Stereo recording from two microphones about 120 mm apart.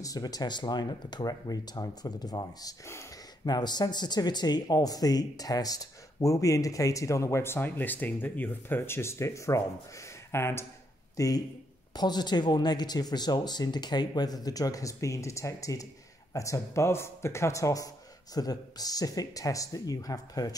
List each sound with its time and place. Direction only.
0.0 s speech: 30° left (ahead or behind)